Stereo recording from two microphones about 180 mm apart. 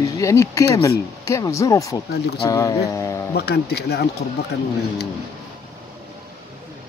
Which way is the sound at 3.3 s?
65° left (ahead or behind).